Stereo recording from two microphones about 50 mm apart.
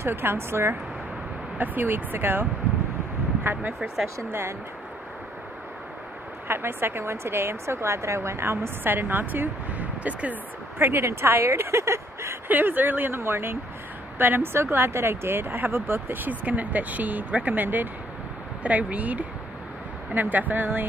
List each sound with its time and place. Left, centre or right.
0.0 s a woman's voice: right
1.6 s speech: right
4.3 s speech: right
6.4 s a woman's voice: right
10.8 s speech: right
11.4 s speech: right
12.4 s speech: right
13.1 s a woman's voice: right